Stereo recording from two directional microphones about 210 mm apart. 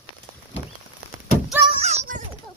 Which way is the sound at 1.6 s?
30° right (ahead or behind).